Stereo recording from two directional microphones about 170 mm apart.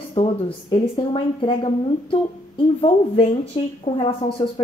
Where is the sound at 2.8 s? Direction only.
35° left (ahead or behind).